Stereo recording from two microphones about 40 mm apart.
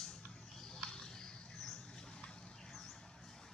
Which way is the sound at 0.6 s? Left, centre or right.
Centre.